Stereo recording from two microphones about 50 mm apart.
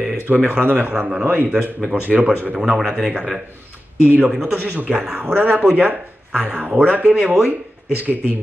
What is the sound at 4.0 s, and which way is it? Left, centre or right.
Speech, right.